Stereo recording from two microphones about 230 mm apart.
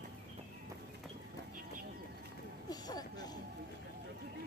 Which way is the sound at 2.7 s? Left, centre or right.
Centre.